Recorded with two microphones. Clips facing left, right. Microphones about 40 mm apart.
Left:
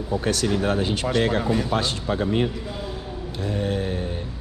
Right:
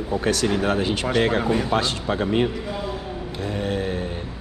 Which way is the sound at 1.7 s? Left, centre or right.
Right.